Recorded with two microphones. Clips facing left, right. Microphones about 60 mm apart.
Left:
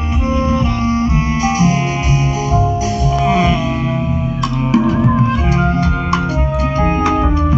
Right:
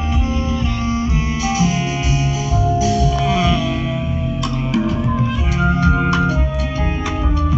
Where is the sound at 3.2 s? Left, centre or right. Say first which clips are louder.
Left 6 dB; left.